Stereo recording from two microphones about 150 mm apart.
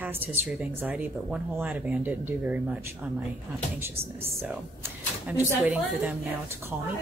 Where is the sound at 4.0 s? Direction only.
40° right (ahead or behind).